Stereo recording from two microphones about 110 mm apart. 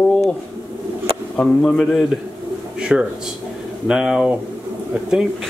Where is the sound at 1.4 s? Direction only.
5° left (ahead or behind).